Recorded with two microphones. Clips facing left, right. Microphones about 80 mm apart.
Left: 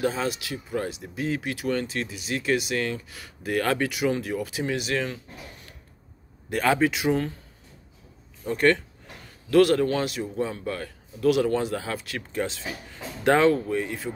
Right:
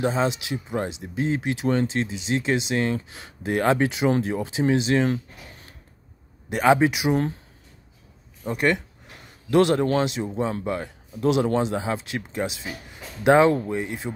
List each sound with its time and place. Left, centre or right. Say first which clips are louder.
0.0 s speech: right 3 dB; right
6.5 s speech: right 4 dB; centre
8.5 s a sound: left 1 dB; centre
9.9 s speech: right 3 dB; right